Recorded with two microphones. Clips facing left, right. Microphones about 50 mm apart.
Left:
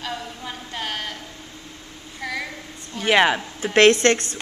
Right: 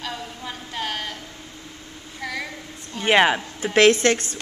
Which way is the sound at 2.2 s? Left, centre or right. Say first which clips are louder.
Left 1 dB; centre.